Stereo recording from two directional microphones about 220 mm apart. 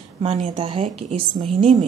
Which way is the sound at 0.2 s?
25° right (ahead or behind).